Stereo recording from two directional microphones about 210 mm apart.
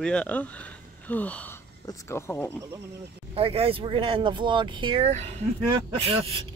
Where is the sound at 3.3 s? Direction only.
25° right (ahead or behind).